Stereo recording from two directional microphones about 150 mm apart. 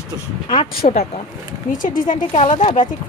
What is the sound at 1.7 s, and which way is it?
Speech, 60° left (ahead or behind).